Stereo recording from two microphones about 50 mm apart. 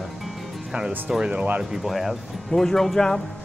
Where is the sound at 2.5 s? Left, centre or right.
Centre.